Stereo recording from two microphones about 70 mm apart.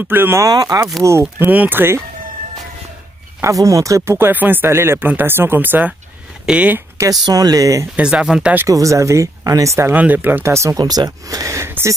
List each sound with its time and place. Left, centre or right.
0.1 s speech: right
0.4 s speech: right
1.4 s speech: right
3.4 s speech: right
4.3 s speech: right
6.4 s speech: centre
7.2 s speech: right
7.9 s speech: centre
8.6 s speech: right
9.9 s speech: right
10.4 s speech: right
10.8 s speech: right